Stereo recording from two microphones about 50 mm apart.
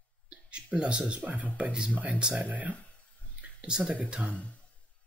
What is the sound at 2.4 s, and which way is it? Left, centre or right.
Speech, right.